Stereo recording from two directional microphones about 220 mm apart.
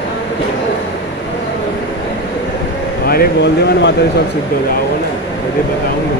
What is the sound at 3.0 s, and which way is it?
Speech, 45° left (ahead or behind).